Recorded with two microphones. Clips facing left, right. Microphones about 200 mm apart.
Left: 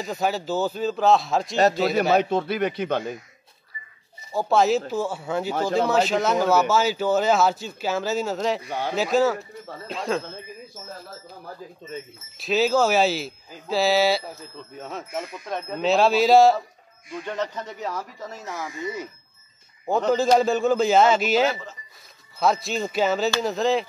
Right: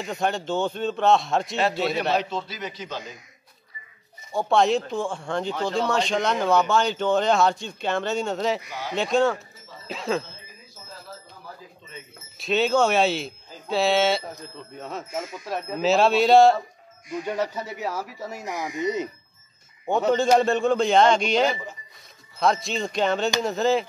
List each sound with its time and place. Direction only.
0.0 s speech: 5° left (ahead or behind)
2.1 s a man's voice: 55° left (ahead or behind)
4.3 s speech: centre (ahead or behind)
8.6 s speech: 30° left (ahead or behind)
8.9 s speech: 5° left (ahead or behind)
12.4 s speech: centre (ahead or behind)
17.2 s speech: 10° right (ahead or behind)
19.9 s speech: centre (ahead or behind)